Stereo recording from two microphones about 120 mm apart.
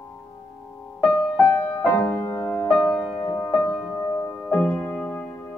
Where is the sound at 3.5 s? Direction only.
5° left (ahead or behind).